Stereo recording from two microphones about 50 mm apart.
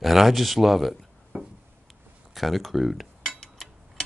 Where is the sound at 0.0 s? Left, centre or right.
Centre.